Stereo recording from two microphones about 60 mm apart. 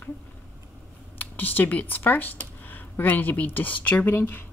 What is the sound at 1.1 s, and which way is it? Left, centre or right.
Speech, left.